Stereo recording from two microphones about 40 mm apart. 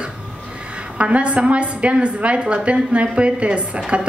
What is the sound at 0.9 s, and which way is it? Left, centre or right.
A woman's voice, right.